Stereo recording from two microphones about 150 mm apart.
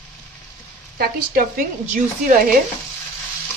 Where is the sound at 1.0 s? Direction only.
70° right (ahead or behind).